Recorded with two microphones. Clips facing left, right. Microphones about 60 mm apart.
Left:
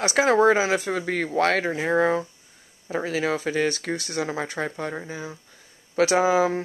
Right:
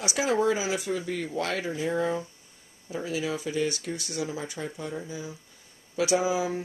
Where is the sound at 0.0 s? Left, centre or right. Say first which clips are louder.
Left 7 dB; left.